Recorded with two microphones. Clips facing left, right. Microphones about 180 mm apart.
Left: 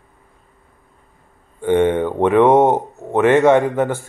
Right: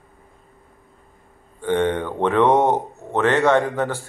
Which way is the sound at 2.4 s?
45° left (ahead or behind).